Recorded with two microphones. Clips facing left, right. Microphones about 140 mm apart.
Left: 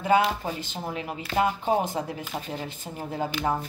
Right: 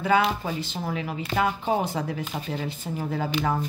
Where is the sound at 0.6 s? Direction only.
45° left (ahead or behind).